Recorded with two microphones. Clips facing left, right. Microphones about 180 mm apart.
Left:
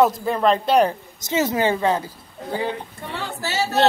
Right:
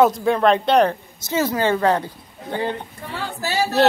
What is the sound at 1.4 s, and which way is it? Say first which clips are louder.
Speech: even; 20° left (ahead or behind).